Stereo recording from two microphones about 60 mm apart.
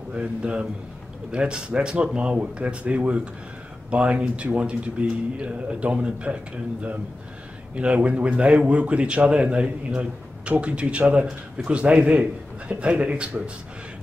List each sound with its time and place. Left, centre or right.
0.1 s a man's voice: centre